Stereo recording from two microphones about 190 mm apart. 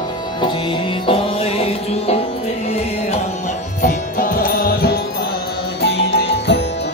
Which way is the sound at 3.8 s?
45° left (ahead or behind).